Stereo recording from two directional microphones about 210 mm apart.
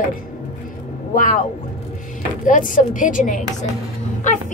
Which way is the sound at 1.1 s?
40° left (ahead or behind).